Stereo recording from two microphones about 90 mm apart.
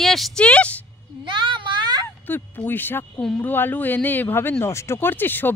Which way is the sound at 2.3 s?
20° left (ahead or behind).